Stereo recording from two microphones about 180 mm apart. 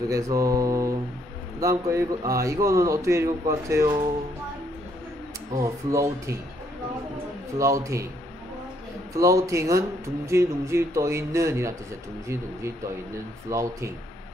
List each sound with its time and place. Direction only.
0.1 s speech: 20° right (ahead or behind)
5.5 s speech: 15° right (ahead or behind)
7.5 s speech: 15° right (ahead or behind)
9.1 s speech: 20° right (ahead or behind)
13.5 s speech: 15° right (ahead or behind)